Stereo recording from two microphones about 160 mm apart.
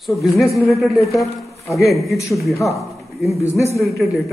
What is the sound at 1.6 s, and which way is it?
Speech, 20° left (ahead or behind).